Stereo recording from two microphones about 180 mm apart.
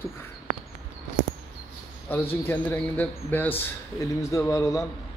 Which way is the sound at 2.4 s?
10° left (ahead or behind).